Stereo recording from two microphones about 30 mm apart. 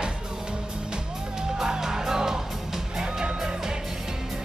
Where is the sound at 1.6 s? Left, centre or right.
Centre.